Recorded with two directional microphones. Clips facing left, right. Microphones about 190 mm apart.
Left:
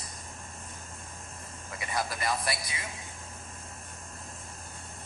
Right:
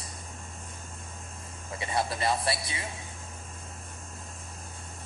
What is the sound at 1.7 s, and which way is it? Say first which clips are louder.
A woman's voice: right 3 dB; 25° right (ahead or behind).